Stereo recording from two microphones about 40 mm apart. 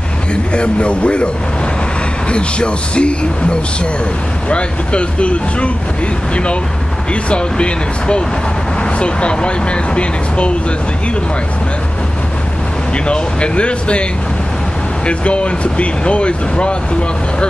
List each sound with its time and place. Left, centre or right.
0.6 s speech: left
2.3 s speech: left
12.9 s speech: left
15.0 s speech: left